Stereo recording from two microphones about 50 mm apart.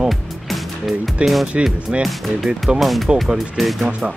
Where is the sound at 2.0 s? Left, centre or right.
Centre.